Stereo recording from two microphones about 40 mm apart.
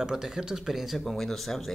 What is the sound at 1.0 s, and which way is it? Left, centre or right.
Speech, centre.